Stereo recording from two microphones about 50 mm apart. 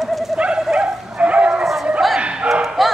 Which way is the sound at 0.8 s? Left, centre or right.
Right.